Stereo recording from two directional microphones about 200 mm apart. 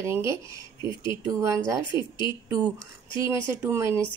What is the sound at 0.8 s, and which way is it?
Speech, 25° left (ahead or behind).